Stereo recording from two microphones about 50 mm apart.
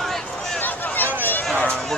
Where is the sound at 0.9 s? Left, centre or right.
Left.